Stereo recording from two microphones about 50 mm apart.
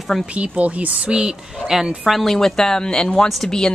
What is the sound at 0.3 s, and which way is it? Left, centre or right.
Speech, right.